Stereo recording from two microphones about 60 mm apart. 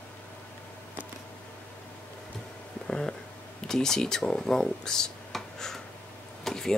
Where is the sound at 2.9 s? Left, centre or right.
Centre.